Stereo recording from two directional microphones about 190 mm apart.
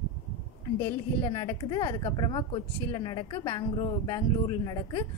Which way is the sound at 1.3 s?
20° left (ahead or behind).